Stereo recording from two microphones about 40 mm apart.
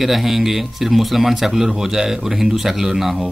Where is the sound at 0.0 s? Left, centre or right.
Centre.